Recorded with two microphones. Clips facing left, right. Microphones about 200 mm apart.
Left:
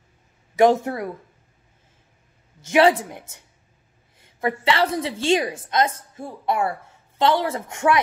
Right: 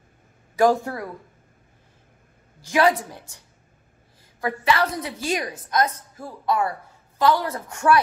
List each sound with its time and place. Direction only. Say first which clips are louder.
0.6 s a woman's voice: left 2 dB; 20° left (ahead or behind)
2.6 s a woman's voice: left 3 dB; 25° left (ahead or behind)